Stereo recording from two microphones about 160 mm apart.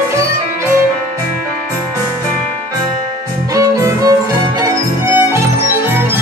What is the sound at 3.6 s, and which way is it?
Music, 20° right (ahead or behind).